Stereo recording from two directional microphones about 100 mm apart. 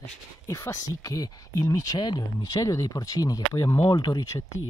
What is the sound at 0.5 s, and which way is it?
Speech, 35° left (ahead or behind).